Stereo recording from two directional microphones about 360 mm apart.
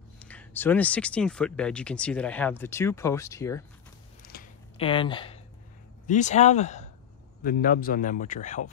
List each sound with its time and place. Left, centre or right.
0.2 s speech: centre
4.2 s a sound: left
6.0 s a man's voice: centre